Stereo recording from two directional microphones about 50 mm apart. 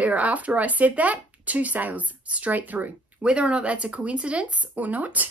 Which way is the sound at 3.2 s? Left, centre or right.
Right.